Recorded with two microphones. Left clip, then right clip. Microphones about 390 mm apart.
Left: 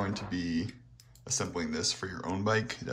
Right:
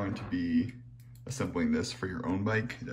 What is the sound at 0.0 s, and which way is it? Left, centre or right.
Speech, centre.